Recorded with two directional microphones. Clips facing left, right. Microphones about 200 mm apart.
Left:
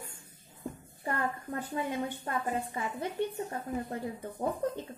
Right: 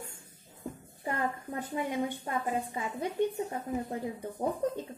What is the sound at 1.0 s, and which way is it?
A woman's voice, 15° right (ahead or behind).